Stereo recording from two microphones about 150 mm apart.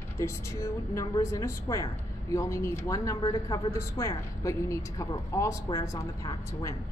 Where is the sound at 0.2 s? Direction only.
20° left (ahead or behind).